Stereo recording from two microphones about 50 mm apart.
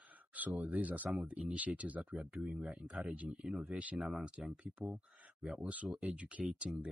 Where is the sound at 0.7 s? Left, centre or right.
Right.